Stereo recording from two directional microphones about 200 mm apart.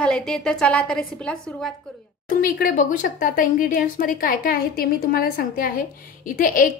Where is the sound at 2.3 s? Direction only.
45° left (ahead or behind).